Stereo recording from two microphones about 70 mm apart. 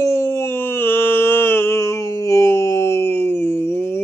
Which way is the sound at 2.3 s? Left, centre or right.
Left.